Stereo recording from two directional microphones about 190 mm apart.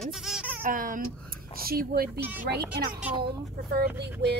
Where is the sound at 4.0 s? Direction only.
60° right (ahead or behind).